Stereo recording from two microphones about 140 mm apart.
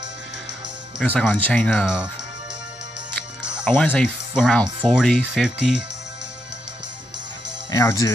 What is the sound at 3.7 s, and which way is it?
Speech, 10° left (ahead or behind).